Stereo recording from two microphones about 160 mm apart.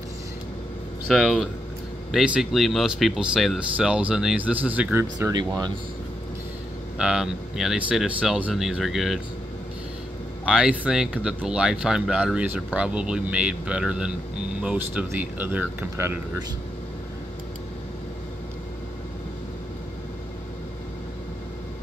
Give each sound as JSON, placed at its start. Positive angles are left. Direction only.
{"t": 1.0, "sound": "speech", "side_deg": 0}
{"t": 7.0, "sound": "speech", "side_deg": -5}
{"t": 10.4, "sound": "speech", "side_deg": -5}